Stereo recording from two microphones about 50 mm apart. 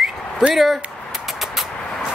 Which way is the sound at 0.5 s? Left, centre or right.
Centre.